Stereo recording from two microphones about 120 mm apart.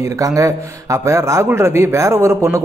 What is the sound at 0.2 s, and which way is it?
A man's voice, 25° right (ahead or behind).